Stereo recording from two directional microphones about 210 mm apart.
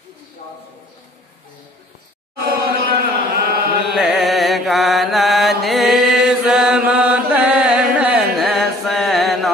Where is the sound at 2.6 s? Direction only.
45° right (ahead or behind).